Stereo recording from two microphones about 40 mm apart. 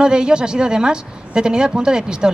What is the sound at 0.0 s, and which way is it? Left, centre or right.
Speech, right.